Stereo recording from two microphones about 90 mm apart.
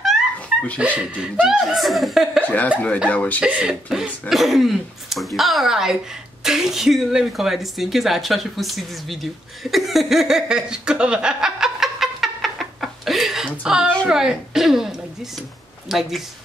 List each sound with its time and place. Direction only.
0.7 s speech: 15° right (ahead or behind)
2.4 s cough: 20° left (ahead or behind)
3.1 s speech: 15° left (ahead or behind)
3.3 s a woman's voice: 15° right (ahead or behind)